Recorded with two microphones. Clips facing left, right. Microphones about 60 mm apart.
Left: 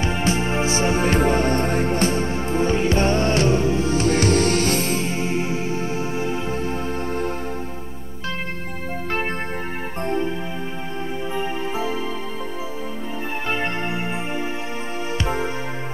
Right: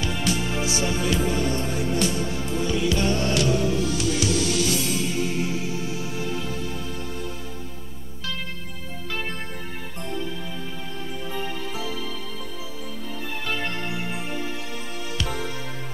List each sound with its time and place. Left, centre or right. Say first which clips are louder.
0.0 s music: left 4 dB; left
10.0 s music: left 8 dB; left
11.3 s music: left 6 dB; left
13.5 s music: left 4 dB; left